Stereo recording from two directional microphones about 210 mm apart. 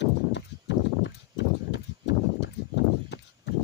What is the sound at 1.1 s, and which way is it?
Clip-clop, 55° left (ahead or behind).